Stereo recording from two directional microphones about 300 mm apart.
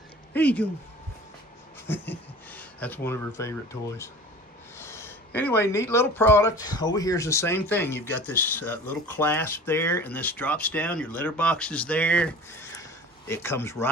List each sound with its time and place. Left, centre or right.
0.3 s speech: centre
1.9 s speech: centre
4.7 s speech: centre